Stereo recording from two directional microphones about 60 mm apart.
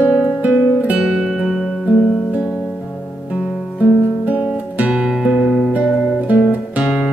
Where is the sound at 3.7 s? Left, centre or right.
Right.